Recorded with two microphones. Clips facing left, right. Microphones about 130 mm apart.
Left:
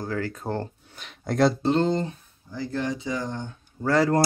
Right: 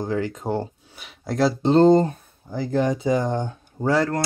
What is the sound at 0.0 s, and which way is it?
Speech, 20° right (ahead or behind).